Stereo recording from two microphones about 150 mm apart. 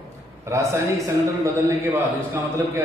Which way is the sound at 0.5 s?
20° right (ahead or behind).